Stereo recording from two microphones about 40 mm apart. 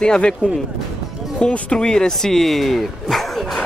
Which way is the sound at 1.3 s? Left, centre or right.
Left.